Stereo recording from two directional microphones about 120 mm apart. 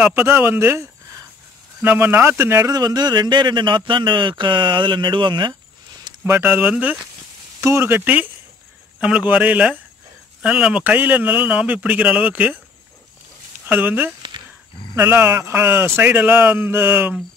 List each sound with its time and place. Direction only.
0.0 s speech: 20° right (ahead or behind)
2.7 s speech: 35° right (ahead or behind)
6.2 s speech: 20° right (ahead or behind)
13.7 s speech: 15° right (ahead or behind)